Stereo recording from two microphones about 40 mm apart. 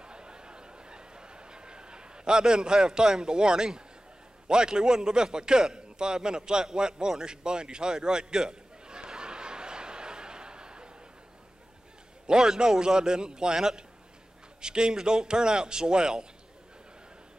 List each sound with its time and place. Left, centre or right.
0.0 s a sound: right
4.5 s a man's voice: right
12.3 s a man's voice: centre